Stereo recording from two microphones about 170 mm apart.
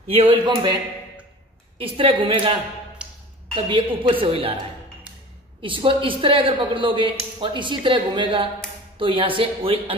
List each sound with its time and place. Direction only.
0.1 s a woman's voice: 30° right (ahead or behind)
1.8 s a woman's voice: 30° right (ahead or behind)
3.0 s a sound: 5° right (ahead or behind)
3.5 s a woman's voice: 30° right (ahead or behind)
5.6 s a woman's voice: 30° right (ahead or behind)